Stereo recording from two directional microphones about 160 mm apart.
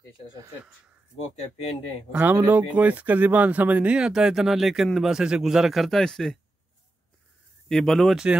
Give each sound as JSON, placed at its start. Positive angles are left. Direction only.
{"t": 1.1, "sound": "speech", "side_deg": 40}
{"t": 2.1, "sound": "speech", "side_deg": -15}
{"t": 7.6, "sound": "speech", "side_deg": 0}